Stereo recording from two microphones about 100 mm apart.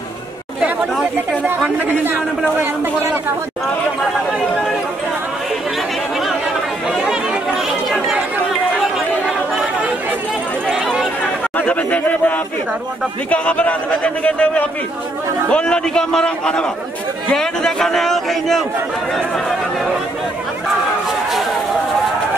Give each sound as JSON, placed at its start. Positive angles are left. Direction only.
{"t": 0.6, "sound": "chatter", "side_deg": -10}
{"t": 2.6, "sound": "a man's voice", "side_deg": -25}
{"t": 6.9, "sound": "chatter", "side_deg": -5}
{"t": 10.7, "sound": "chatter", "side_deg": -5}
{"t": 11.5, "sound": "a sound", "side_deg": 15}
{"t": 13.3, "sound": "a man's voice", "side_deg": 15}